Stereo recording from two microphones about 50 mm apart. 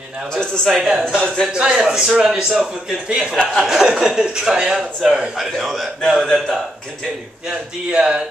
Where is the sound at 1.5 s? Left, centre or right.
Centre.